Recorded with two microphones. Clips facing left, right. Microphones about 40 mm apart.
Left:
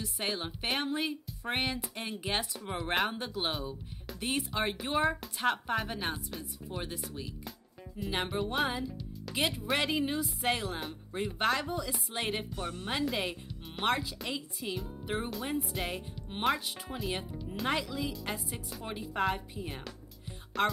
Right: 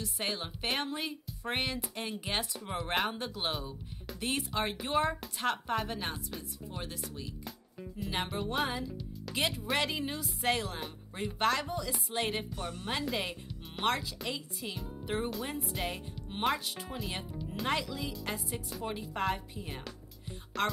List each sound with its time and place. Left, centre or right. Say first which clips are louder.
0.0 s music: left 1 dB; centre
12.5 s speech: left 2 dB; left
12.8 s music: left 2 dB; centre